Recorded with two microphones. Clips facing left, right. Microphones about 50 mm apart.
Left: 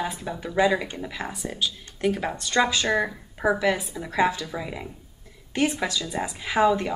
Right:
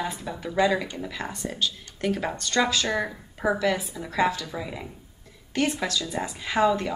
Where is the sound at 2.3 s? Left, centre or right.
Centre.